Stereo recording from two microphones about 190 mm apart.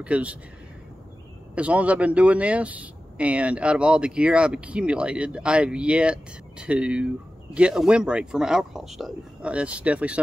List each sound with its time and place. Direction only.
0.0 s speech: 5° right (ahead or behind)
1.5 s speech: 5° right (ahead or behind)